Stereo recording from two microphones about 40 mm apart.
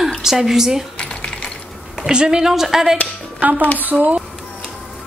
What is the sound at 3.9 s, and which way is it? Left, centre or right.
Speech, right.